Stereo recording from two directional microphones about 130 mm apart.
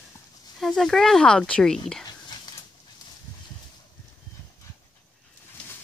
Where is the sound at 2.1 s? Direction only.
35° left (ahead or behind).